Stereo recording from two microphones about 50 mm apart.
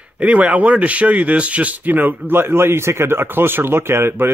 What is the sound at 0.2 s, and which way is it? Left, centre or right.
Speech, right.